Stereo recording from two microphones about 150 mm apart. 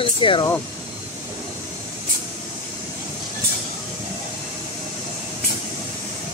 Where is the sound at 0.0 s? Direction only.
35° left (ahead or behind).